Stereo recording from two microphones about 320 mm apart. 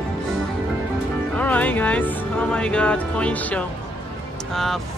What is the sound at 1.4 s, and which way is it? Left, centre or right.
Speech, centre.